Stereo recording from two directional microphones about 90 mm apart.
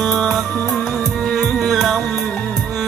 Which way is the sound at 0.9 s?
Centre (ahead or behind).